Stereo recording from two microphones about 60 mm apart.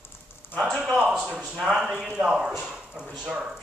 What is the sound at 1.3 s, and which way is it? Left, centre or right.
Speech, centre.